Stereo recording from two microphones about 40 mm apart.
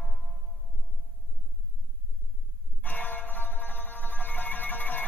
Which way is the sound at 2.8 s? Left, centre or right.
Left.